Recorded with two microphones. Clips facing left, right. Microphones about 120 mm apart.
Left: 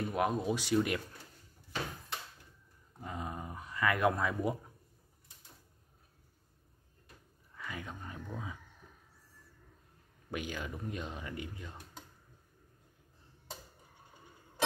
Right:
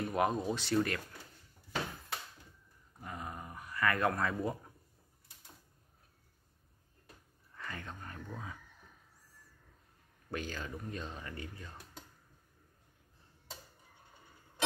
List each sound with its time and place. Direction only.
0.0 s speech: centre (ahead or behind)
3.0 s dog: 20° left (ahead or behind)
7.5 s speech: 10° left (ahead or behind)
10.3 s speech: 15° left (ahead or behind)